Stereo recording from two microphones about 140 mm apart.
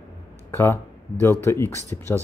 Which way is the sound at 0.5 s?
15° left (ahead or behind).